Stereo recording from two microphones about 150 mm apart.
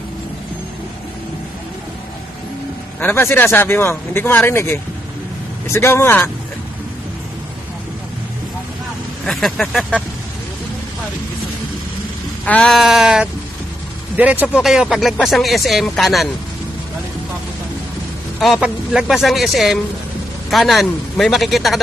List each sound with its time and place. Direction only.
3.0 s speech: 15° left (ahead or behind)
9.2 s speech: centre (ahead or behind)
12.4 s speech: 5° left (ahead or behind)
18.4 s speech: 5° right (ahead or behind)